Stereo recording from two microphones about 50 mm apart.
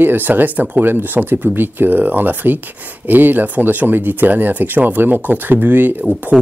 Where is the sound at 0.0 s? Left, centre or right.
Right.